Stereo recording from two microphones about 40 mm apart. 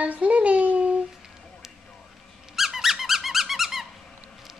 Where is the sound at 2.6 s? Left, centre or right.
Centre.